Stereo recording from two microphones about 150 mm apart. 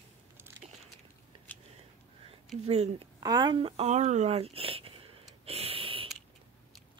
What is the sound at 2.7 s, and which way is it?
Speech, 45° right (ahead or behind).